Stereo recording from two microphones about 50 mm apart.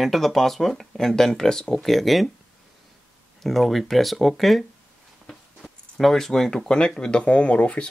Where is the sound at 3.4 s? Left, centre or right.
Centre.